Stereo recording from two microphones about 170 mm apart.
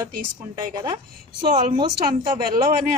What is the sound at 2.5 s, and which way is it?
Speech, 55° right (ahead or behind).